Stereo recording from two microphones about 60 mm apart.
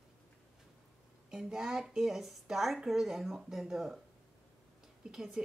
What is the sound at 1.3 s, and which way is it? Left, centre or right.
A woman's voice, centre.